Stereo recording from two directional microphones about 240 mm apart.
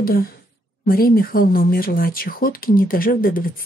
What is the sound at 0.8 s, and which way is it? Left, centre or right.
Speech, left.